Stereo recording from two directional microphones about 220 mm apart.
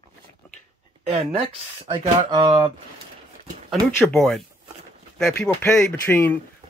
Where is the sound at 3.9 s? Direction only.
Centre (ahead or behind).